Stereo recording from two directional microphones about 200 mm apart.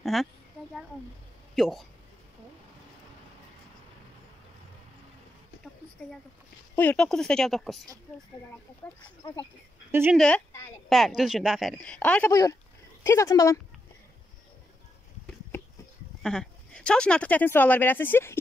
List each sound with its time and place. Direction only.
0.0 s a sound: centre (ahead or behind)
1.5 s speech: centre (ahead or behind)
6.7 s speech: 10° left (ahead or behind)
9.2 s speech: 20° left (ahead or behind)
9.8 s speech: 10° right (ahead or behind)
10.1 s speech: 5° left (ahead or behind)
16.2 s speech: 5° left (ahead or behind)